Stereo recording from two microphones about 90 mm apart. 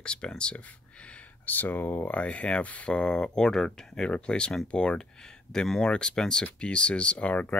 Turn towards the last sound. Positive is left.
turn(degrees=15)  # may be behind; listen again after turning